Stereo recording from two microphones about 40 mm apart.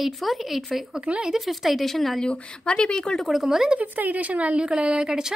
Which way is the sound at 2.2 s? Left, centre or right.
Left.